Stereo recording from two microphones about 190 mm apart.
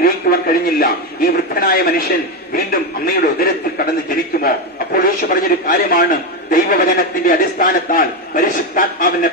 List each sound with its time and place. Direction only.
0.0 s a man's voice: 50° left (ahead or behind)